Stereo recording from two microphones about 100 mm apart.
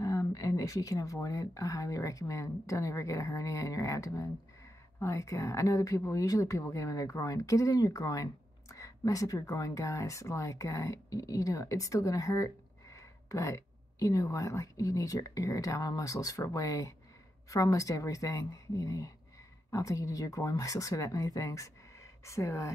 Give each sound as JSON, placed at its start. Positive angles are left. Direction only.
{"t": 0.0, "sound": "a woman's voice", "side_deg": 35}